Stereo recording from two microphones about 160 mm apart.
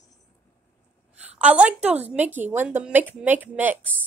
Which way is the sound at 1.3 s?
10° right (ahead or behind).